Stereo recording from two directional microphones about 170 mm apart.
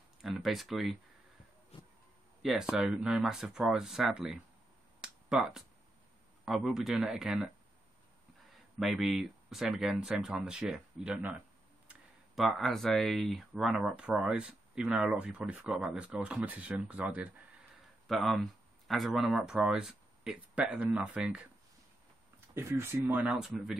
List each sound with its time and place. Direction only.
0.2 s speech: centre (ahead or behind)
1.7 s a sound: 30° left (ahead or behind)
2.7 s speech: 5° right (ahead or behind)
5.0 s a sound: 5° right (ahead or behind)
6.4 s speech: centre (ahead or behind)
8.7 s speech: centre (ahead or behind)
22.5 s speech: 15° right (ahead or behind)